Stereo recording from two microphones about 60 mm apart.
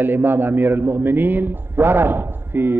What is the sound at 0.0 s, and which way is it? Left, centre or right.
A man's voice, right.